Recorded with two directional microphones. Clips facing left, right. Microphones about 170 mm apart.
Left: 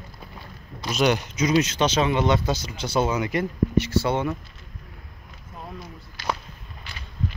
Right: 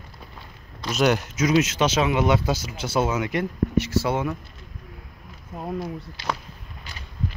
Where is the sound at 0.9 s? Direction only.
5° right (ahead or behind).